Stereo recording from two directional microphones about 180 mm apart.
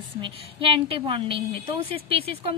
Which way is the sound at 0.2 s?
30° right (ahead or behind).